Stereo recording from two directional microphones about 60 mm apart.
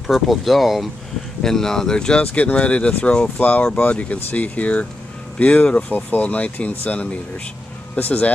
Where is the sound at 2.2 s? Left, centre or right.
Left.